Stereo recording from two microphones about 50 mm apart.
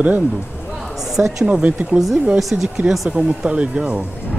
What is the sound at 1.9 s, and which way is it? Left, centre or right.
Speech, centre.